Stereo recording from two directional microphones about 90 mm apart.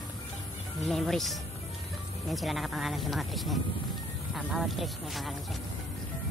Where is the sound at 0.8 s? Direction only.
5° left (ahead or behind).